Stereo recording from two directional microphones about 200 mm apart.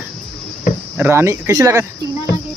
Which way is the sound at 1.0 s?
10° right (ahead or behind).